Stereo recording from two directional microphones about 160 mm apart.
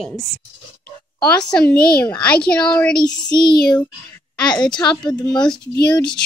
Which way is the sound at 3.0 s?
30° left (ahead or behind).